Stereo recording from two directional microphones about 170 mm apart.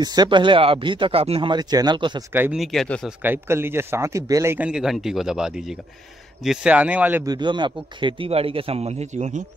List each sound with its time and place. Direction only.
0.0 s speech: 25° right (ahead or behind)
2.3 s speech: 10° right (ahead or behind)
2.6 s speech: centre (ahead or behind)
3.2 s speech: 15° right (ahead or behind)
7.2 s speech: 25° right (ahead or behind); by 9.4 s 45° right (ahead or behind)